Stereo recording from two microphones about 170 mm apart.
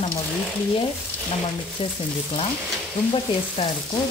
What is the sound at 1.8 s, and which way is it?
Speech, 30° left (ahead or behind).